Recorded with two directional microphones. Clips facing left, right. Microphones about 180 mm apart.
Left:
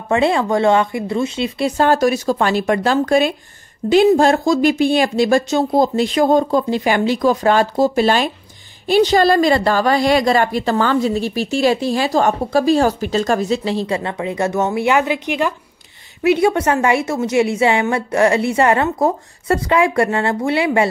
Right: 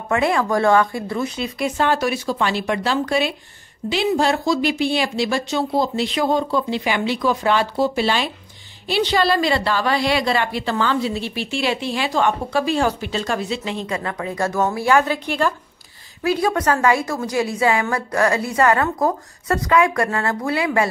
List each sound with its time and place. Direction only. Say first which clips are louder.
0.1 s a woman's voice: left 3 dB; 25° left (ahead or behind)
1.8 s a woman's voice: left 6 dB; 40° left (ahead or behind)